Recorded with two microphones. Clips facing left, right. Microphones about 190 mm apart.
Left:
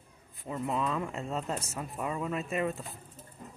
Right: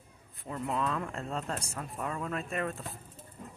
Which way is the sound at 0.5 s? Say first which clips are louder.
Left 1 dB; 5° left (ahead or behind).